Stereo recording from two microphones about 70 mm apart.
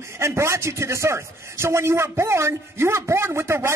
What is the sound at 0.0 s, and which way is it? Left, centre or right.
A man's voice, right.